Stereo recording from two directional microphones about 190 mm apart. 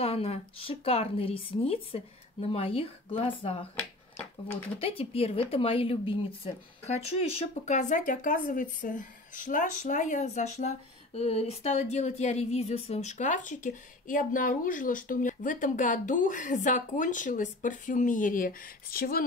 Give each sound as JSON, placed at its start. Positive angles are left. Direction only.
{"t": 0.0, "sound": "a woman's voice", "side_deg": 30}
{"t": 4.7, "sound": "a woman's voice", "side_deg": 30}